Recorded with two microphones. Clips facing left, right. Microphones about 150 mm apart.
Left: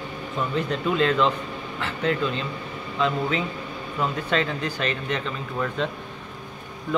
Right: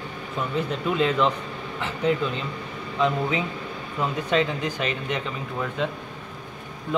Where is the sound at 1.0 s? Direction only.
15° right (ahead or behind).